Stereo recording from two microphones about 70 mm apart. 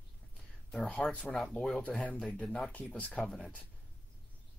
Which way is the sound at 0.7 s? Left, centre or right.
Centre.